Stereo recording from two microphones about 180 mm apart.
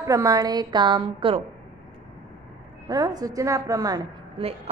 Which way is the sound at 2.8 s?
20° right (ahead or behind).